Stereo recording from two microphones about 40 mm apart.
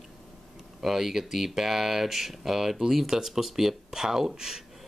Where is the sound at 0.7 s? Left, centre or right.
Centre.